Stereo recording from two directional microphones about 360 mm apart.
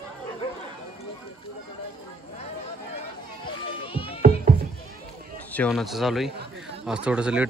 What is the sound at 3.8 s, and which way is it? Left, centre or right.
Music, centre.